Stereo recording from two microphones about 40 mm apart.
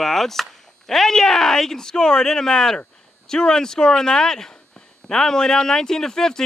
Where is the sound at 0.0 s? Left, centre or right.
Centre.